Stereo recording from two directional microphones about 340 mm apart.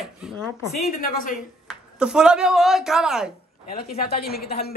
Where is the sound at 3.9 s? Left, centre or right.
Left.